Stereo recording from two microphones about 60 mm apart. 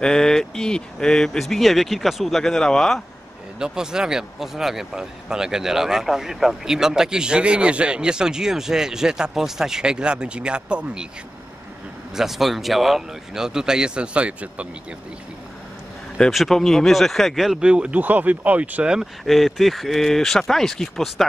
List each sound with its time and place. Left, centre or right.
0.0 s speech: centre
3.5 s speech: centre
12.1 s speech: centre
16.3 s speech: centre
17.6 s speech: centre
18.9 s speech: centre